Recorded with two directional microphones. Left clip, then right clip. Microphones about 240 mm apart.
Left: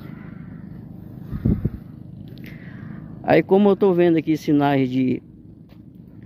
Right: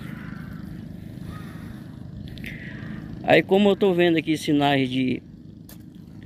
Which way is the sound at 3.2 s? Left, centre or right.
Centre.